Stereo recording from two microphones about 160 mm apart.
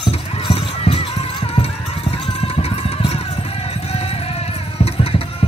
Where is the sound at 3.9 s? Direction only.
40° left (ahead or behind).